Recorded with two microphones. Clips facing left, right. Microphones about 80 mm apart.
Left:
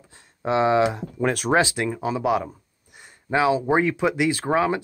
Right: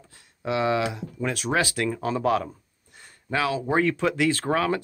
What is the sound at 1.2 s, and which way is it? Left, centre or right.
Speech, left.